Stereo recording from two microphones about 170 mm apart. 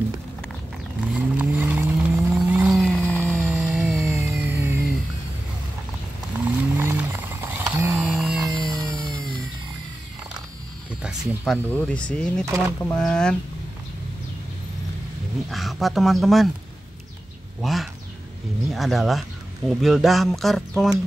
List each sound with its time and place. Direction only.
1.1 s vehicle: 10° right (ahead or behind); by 3.3 s 10° left (ahead or behind)
3.3 s music: 10° right (ahead or behind)
4.1 s music: 15° right (ahead or behind)
6.8 s a sound: 15° right (ahead or behind)
8.5 s music: 20° right (ahead or behind)
11.0 s a sound: 5° right (ahead or behind)
11.7 s speech: 5° left (ahead or behind)
12.4 s speech: 20° right (ahead or behind)
12.8 s speech: 5° left (ahead or behind)
15.5 s speech: centre (ahead or behind)
17.6 s a sound: centre (ahead or behind)
18.7 s speech: centre (ahead or behind)